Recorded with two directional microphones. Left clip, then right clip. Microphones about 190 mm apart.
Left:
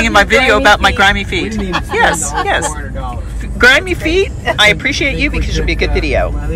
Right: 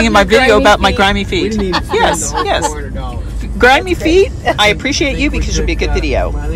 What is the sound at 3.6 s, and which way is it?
A woman's voice, 20° right (ahead or behind).